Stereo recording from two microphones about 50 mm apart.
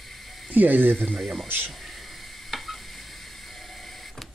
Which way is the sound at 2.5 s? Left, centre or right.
Centre.